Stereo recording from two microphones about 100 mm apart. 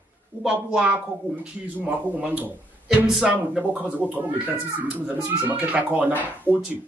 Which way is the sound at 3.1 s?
5° right (ahead or behind).